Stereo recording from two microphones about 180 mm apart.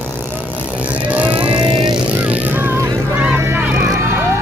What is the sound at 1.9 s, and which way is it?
Vehicle, 5° right (ahead or behind).